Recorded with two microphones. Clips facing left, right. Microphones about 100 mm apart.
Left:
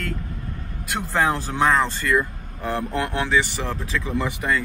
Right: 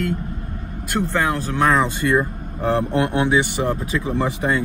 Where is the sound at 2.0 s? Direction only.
30° right (ahead or behind).